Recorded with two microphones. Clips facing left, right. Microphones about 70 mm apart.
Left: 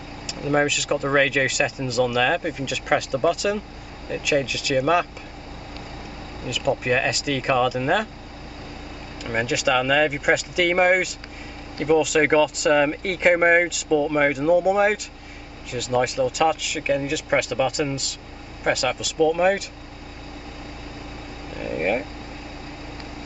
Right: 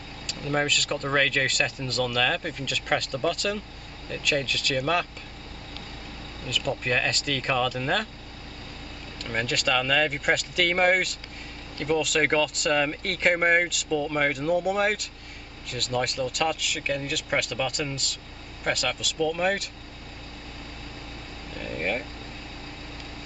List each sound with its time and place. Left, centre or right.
0.3 s speech: centre
6.4 s speech: centre
9.2 s speech: centre
21.5 s a sound: centre